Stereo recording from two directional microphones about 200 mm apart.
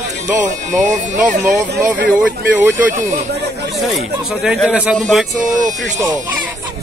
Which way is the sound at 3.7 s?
Centre (ahead or behind).